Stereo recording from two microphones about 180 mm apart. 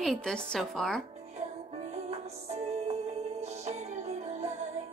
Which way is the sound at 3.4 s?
40° right (ahead or behind).